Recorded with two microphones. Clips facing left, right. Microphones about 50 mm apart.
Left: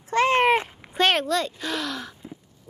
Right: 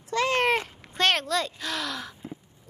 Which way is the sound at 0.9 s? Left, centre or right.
Centre.